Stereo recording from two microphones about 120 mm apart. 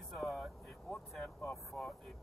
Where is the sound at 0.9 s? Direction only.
10° left (ahead or behind).